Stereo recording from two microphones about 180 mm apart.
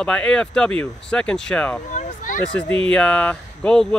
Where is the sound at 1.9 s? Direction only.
40° left (ahead or behind).